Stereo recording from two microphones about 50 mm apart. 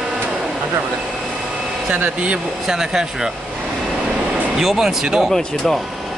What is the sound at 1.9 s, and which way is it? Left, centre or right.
Speech, right.